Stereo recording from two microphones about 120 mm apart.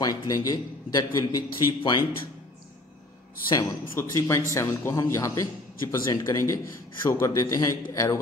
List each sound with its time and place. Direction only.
0.0 s a man's voice: 30° left (ahead or behind)
3.4 s a man's voice: 30° left (ahead or behind)